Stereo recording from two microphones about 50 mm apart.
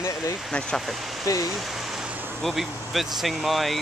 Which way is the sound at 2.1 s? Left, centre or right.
Right.